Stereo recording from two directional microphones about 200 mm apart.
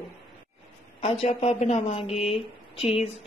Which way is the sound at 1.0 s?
30° left (ahead or behind).